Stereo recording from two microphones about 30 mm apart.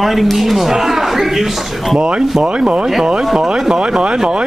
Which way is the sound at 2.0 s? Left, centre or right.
Right.